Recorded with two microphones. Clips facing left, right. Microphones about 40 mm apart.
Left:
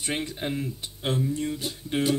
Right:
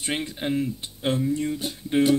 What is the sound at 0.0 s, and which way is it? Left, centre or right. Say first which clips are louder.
Speech: right 2 dB; right.